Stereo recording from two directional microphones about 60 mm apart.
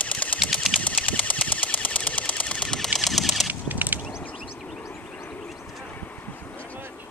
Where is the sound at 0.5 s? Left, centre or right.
Centre.